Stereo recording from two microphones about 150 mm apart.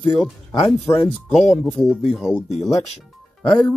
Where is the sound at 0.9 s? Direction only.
30° left (ahead or behind).